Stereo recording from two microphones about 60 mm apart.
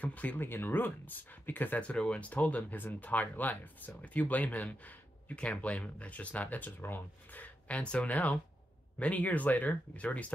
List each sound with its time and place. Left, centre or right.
0.0 s speech: left
0.4 s speech: left
1.8 s speech: centre